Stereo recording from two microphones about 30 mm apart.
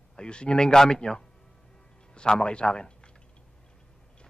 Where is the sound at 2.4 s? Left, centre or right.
Left.